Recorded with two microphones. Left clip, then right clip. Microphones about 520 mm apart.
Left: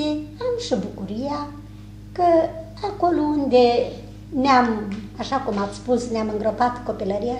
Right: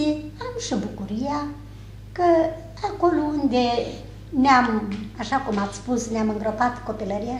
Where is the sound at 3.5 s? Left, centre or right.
Left.